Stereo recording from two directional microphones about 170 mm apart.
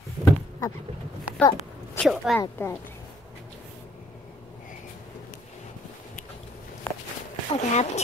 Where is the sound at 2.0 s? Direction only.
Centre (ahead or behind).